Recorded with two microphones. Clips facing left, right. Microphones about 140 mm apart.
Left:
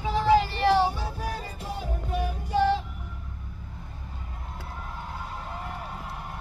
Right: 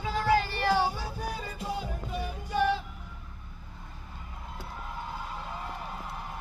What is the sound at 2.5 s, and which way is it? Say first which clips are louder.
Vehicle: left 4 dB; 25° left (ahead or behind).